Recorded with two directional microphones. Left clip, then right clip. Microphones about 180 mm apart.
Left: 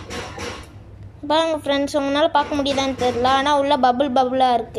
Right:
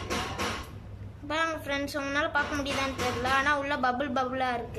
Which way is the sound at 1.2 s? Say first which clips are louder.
Left 11 dB; 25° left (ahead or behind).